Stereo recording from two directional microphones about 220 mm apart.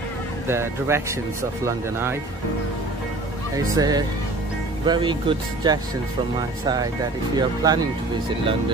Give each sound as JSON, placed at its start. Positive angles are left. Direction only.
{"t": 0.5, "sound": "speech", "side_deg": -10}
{"t": 3.5, "sound": "speech", "side_deg": -15}